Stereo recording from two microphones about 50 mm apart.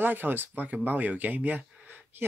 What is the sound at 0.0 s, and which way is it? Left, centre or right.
Speech, right.